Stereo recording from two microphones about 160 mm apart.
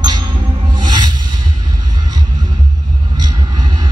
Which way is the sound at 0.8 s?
30° right (ahead or behind).